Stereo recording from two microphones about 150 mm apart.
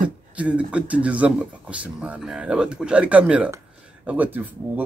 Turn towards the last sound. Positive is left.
turn(degrees=-10)  # may be behind; listen again after turning